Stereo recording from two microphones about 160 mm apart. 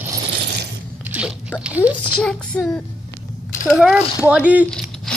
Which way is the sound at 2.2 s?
5° left (ahead or behind).